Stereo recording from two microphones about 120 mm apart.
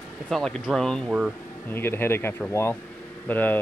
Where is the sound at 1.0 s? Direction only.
5° right (ahead or behind).